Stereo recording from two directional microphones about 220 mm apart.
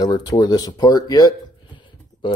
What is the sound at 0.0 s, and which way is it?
Speech, 20° left (ahead or behind).